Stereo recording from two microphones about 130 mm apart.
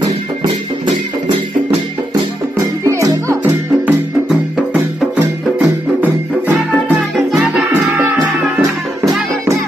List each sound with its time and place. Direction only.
0.0 s music: 35° right (ahead or behind)
2.8 s music: 25° right (ahead or behind)
5.1 s music: 10° right (ahead or behind)
7.2 s music: centre (ahead or behind)